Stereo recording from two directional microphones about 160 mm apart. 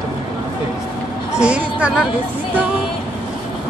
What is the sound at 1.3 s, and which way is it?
Speech, 5° right (ahead or behind).